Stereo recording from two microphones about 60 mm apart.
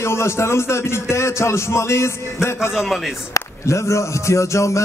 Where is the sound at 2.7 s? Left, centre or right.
Centre.